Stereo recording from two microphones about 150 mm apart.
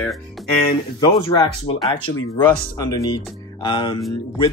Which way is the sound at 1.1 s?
35° left (ahead or behind).